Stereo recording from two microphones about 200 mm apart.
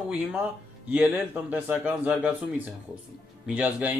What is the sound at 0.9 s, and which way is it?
Speech, 5° right (ahead or behind).